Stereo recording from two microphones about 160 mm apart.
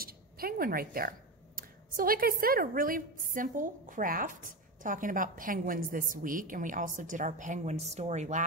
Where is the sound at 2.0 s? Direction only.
65° right (ahead or behind).